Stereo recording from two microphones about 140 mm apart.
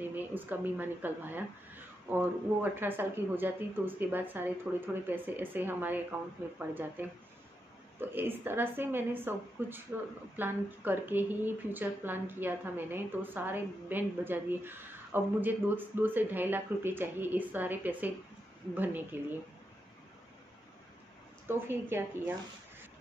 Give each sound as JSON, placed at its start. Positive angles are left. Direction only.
{"t": 0.0, "sound": "speech", "side_deg": -15}
{"t": 19.1, "sound": "speech", "side_deg": -15}
{"t": 21.5, "sound": "speech", "side_deg": -15}